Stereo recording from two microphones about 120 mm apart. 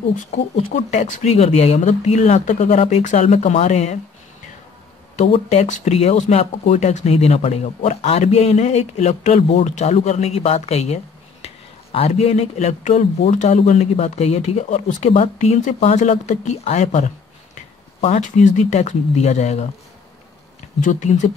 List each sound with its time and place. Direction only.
0.6 s speech: 70° left (ahead or behind)
5.1 s speech: 60° left (ahead or behind)
20.8 s speech: 85° left